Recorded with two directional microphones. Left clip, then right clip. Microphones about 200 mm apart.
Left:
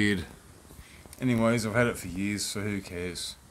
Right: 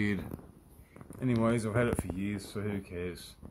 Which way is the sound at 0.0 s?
10° left (ahead or behind).